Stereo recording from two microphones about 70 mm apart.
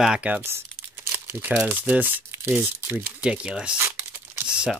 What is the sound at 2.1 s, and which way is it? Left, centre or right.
Speech, right.